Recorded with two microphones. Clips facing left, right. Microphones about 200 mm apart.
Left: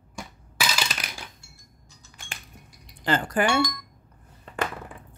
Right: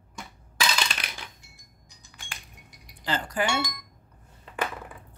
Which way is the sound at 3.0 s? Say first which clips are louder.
Left 6 dB; 55° left (ahead or behind).